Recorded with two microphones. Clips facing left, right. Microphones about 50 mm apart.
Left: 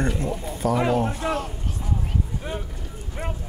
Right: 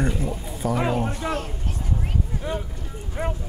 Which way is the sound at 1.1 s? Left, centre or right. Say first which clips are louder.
Left 1 dB; centre.